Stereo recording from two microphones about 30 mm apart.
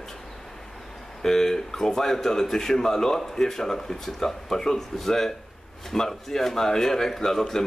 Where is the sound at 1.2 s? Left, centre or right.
Centre.